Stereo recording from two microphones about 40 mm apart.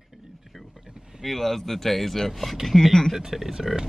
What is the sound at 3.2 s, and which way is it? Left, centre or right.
Speech, centre.